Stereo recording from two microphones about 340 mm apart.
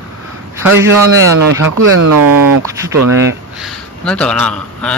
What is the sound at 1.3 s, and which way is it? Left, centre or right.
Speech, right.